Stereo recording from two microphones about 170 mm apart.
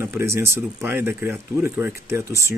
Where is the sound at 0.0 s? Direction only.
15° right (ahead or behind).